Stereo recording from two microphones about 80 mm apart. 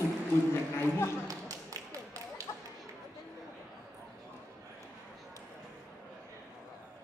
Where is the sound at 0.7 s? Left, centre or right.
Left.